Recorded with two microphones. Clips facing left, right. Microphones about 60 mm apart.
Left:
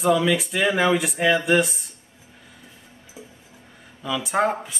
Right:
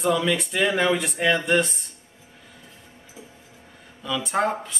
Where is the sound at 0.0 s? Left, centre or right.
Centre.